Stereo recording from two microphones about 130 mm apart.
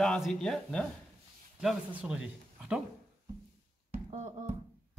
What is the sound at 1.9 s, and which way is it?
Speech, 10° right (ahead or behind).